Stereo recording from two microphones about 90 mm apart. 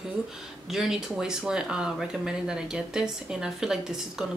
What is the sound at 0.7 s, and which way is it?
Speech, 5° right (ahead or behind).